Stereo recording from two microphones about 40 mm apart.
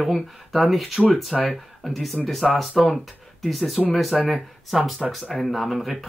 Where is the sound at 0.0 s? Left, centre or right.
Centre.